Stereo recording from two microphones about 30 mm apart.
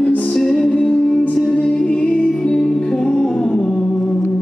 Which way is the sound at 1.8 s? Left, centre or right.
Left.